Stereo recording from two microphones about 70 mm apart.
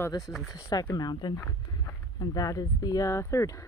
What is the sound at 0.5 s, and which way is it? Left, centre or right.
Speech, left.